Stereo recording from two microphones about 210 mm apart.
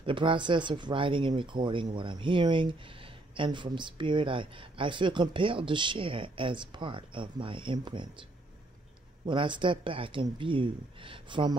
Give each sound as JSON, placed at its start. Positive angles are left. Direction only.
{"t": 0.0, "sound": "speech", "side_deg": -25}
{"t": 9.2, "sound": "speech", "side_deg": -25}